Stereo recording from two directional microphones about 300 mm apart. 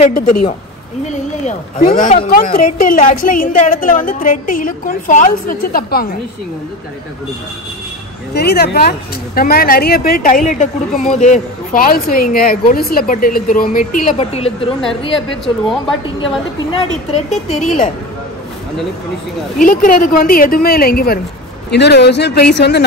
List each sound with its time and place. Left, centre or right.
0.0 s speech: left
1.4 s speech: left
8.4 s a woman's voice: left
17.1 s speech: left
19.6 s speech: left